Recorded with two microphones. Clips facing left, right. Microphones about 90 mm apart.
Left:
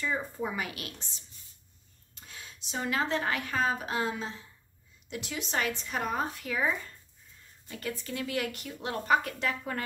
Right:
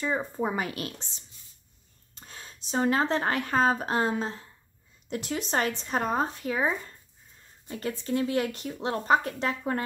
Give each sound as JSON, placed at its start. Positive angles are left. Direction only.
{"t": 0.0, "sound": "speech", "side_deg": -35}